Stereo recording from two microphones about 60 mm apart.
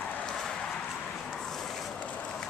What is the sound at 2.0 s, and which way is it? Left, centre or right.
Vehicle, left.